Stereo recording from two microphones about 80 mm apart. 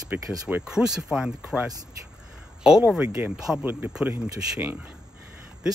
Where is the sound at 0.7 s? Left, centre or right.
Centre.